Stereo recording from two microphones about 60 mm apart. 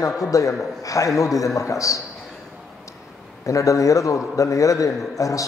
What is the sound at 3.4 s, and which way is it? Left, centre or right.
A man's voice, left.